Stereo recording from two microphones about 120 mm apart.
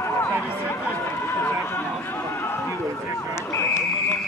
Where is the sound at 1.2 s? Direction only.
20° left (ahead or behind).